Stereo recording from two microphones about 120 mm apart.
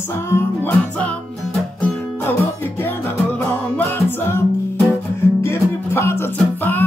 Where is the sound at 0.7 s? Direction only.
5° left (ahead or behind).